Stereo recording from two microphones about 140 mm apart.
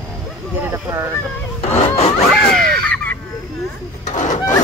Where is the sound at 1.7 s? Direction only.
45° left (ahead or behind).